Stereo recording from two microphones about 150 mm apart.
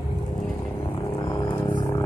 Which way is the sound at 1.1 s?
25° left (ahead or behind).